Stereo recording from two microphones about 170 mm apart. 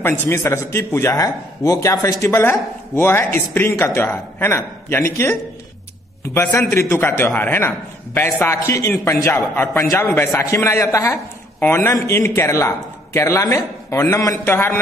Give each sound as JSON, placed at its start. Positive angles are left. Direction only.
{"t": 0.0, "sound": "a man's voice", "side_deg": 15}